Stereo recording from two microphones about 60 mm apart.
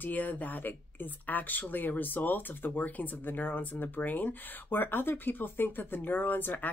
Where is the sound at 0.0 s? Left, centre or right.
Left.